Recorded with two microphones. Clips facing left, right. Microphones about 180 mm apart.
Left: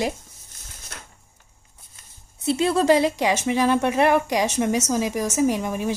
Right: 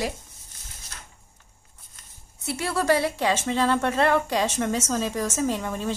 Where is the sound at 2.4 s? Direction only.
20° left (ahead or behind).